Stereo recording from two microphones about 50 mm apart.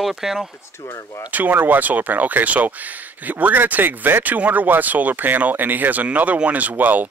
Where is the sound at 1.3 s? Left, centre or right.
Right.